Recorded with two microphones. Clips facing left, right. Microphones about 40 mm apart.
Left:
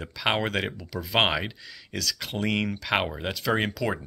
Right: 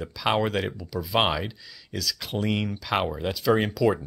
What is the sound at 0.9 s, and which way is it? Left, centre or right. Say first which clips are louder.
Speech: right 3 dB; left.